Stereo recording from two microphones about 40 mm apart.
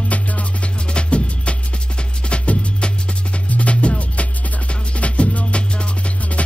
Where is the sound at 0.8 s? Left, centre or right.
Left.